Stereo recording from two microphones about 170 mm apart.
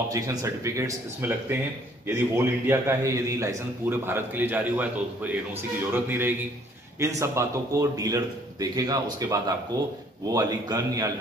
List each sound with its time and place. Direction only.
0.1 s a man's voice: 20° right (ahead or behind)